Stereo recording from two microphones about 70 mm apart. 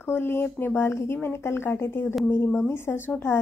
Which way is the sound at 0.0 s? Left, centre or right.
Left.